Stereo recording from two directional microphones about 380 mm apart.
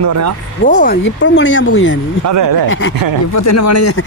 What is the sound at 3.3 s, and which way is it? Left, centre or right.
Speech, left.